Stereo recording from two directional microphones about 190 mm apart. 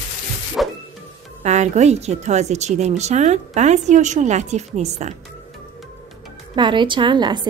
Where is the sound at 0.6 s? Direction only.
Centre (ahead or behind).